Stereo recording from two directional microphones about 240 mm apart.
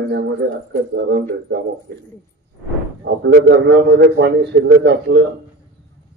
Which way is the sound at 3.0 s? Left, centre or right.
Right.